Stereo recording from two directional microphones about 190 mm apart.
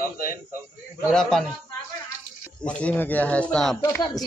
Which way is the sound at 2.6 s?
5° left (ahead or behind).